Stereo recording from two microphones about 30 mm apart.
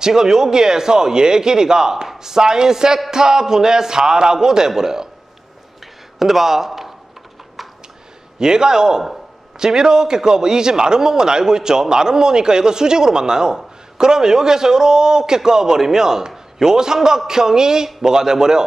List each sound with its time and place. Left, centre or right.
0.0 s a man's voice: centre
6.1 s speech: centre
8.4 s a man's voice: right